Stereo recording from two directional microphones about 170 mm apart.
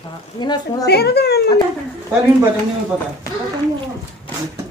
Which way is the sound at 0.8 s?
70° left (ahead or behind).